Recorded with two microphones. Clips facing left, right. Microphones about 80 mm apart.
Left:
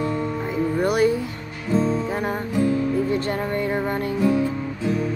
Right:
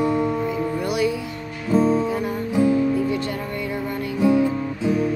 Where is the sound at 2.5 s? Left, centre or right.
Centre.